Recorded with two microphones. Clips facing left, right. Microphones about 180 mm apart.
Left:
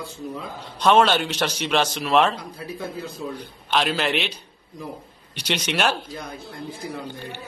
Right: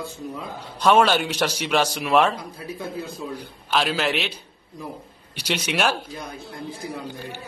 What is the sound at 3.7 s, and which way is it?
Speech, centre (ahead or behind).